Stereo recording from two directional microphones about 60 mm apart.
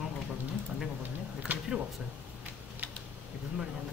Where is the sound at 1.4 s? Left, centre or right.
Centre.